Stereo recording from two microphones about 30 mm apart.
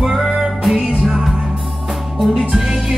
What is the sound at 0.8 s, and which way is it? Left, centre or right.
Music, right.